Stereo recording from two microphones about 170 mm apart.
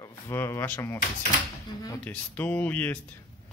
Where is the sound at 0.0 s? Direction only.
15° left (ahead or behind).